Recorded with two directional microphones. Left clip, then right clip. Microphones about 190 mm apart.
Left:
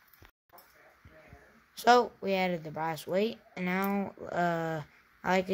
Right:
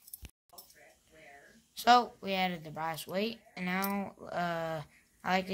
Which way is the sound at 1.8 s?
60° left (ahead or behind).